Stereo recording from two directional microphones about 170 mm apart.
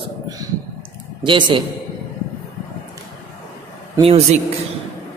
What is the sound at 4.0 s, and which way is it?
Speech, 35° right (ahead or behind).